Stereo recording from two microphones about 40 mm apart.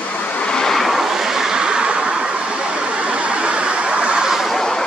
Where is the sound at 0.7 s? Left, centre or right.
Centre; by 2.1 s right.